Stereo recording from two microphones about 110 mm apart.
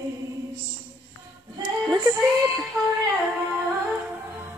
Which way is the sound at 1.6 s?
30° right (ahead or behind).